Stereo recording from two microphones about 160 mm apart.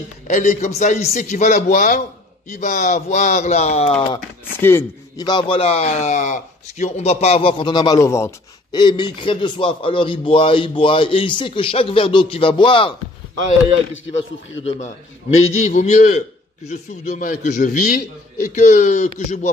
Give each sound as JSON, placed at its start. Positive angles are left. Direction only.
{"t": 0.3, "sound": "a man's voice", "side_deg": 50}
{"t": 4.6, "sound": "speech", "side_deg": 15}
{"t": 5.2, "sound": "a man's voice", "side_deg": 30}
{"t": 8.7, "sound": "a man's voice", "side_deg": 30}
{"t": 14.6, "sound": "a man's voice", "side_deg": 40}